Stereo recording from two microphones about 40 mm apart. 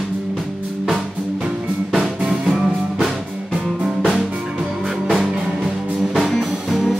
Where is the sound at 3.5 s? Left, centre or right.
Right.